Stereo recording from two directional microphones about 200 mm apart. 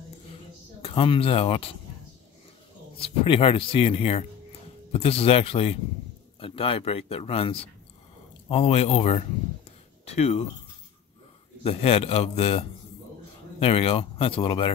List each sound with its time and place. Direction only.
0.8 s speech: 25° left (ahead or behind)
3.0 s speech: 25° left (ahead or behind)
11.6 s speech: 30° left (ahead or behind)